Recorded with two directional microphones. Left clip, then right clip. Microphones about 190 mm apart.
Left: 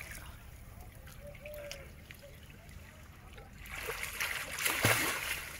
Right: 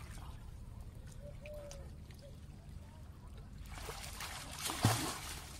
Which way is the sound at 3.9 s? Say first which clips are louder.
Left 10 dB; 60° right (ahead or behind).